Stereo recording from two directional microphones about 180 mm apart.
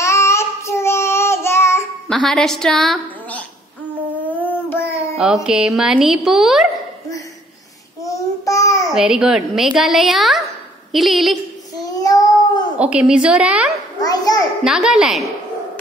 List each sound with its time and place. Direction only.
0.0 s child singing: 15° left (ahead or behind)
2.0 s a woman's voice: 5° left (ahead or behind)
4.4 s a sound: 10° left (ahead or behind)
5.1 s speech: 5° right (ahead or behind)
8.0 s babbling: 20° left (ahead or behind)
8.9 s speech: 5° right (ahead or behind)
11.8 s child singing: 20° left (ahead or behind)
12.7 s a woman's voice: 5° right (ahead or behind)
14.0 s children playing: 20° left (ahead or behind)
14.6 s speech: 5° right (ahead or behind)